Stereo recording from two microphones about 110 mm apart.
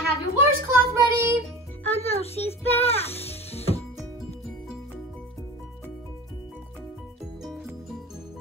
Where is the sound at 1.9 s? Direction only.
65° left (ahead or behind).